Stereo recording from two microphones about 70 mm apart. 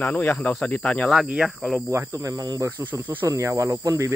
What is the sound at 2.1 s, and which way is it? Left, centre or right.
Speech, right.